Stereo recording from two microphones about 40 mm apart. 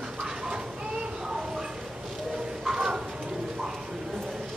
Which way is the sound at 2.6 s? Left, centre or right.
Centre.